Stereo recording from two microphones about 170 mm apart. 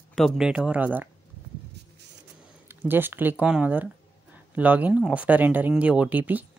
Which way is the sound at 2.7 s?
10° right (ahead or behind).